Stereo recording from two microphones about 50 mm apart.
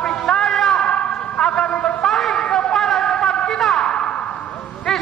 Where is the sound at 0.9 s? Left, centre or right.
Left.